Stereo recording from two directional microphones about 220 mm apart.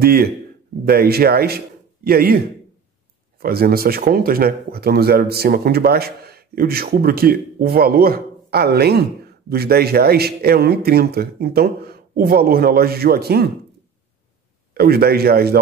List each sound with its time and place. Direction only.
0.0 s speech: 45° right (ahead or behind)
14.7 s speech: 45° right (ahead or behind)